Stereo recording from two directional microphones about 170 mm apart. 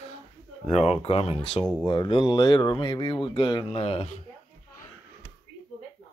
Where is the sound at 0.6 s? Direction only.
40° left (ahead or behind).